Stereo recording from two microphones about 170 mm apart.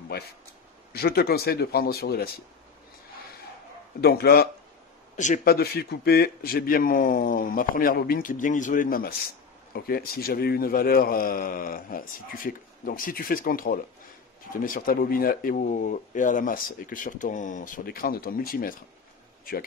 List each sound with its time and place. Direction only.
0.9 s speech: 70° left (ahead or behind)
4.0 s speech: 65° left (ahead or behind)
5.1 s a man's voice: 50° left (ahead or behind)